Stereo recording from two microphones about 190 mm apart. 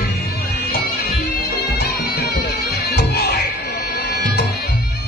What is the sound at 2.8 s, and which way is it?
Music, 60° left (ahead or behind).